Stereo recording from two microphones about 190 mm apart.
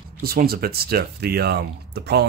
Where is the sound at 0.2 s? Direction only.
55° right (ahead or behind).